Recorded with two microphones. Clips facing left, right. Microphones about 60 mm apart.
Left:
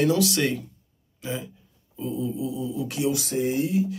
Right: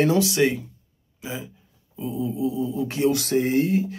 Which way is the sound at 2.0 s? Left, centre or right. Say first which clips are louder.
Right 1 dB; centre.